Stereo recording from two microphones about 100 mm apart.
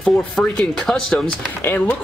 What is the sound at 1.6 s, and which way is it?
Speech, 20° left (ahead or behind).